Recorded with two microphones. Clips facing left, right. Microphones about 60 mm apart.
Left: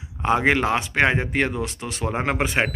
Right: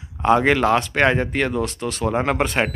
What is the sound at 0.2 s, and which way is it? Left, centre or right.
Speech, centre.